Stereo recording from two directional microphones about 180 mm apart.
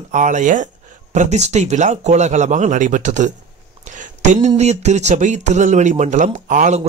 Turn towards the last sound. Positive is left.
turn(degrees=-45)  # may be behind; listen again after turning